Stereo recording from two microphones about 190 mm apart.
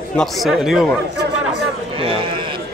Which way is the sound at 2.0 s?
25° right (ahead or behind).